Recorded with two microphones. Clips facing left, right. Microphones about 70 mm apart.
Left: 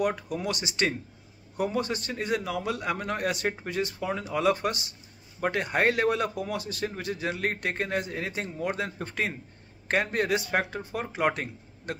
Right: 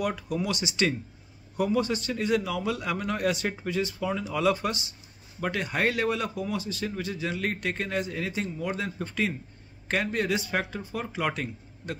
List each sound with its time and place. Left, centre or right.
0.0 s speech: left